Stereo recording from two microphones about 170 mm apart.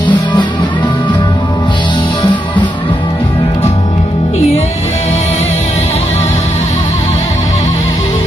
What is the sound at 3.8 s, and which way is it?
Music, 40° left (ahead or behind).